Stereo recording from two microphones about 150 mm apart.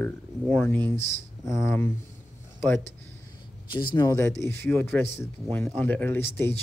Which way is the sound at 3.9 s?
20° left (ahead or behind).